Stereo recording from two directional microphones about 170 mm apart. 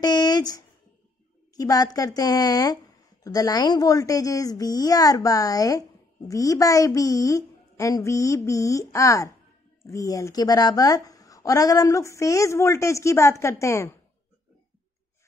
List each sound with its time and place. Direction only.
0.0 s speech: 25° left (ahead or behind)